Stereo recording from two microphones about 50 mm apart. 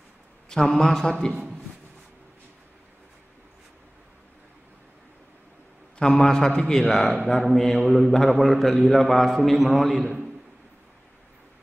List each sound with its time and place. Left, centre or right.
0.5 s a man's voice: centre
5.9 s a man's voice: centre